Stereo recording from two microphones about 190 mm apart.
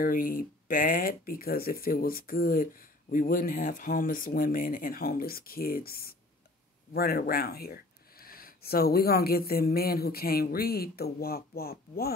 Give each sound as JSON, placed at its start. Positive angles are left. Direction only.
{"t": 0.0, "sound": "speech", "side_deg": 50}